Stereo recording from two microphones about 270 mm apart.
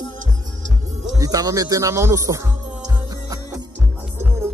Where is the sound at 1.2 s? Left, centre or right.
Centre.